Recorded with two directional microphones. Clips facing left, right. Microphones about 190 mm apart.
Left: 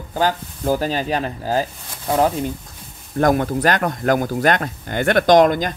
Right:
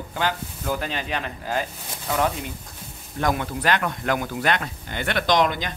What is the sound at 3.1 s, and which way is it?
Speech, 45° left (ahead or behind).